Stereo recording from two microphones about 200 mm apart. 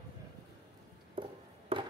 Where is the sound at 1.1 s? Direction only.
25° right (ahead or behind).